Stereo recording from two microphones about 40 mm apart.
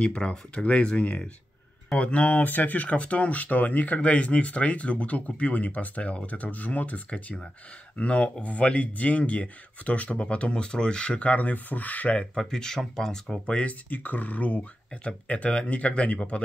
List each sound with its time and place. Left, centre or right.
0.0 s speech: left
12.4 s speech: centre
13.6 s speech: left